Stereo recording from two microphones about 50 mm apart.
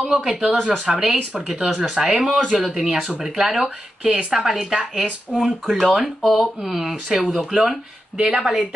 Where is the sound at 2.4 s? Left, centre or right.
Centre.